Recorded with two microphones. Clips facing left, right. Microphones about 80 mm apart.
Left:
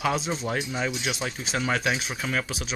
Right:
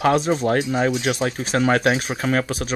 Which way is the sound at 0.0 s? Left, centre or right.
Right.